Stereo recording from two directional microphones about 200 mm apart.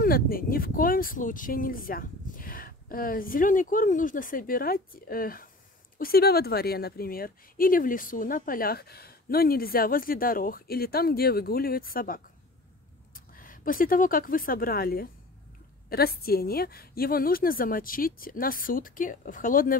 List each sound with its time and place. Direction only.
0.0 s a woman's voice: 45° left (ahead or behind)